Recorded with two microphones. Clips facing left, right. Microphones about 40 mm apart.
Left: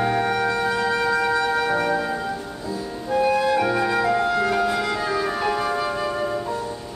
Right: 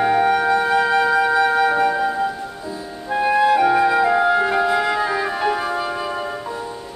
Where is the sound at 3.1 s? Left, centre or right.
Right.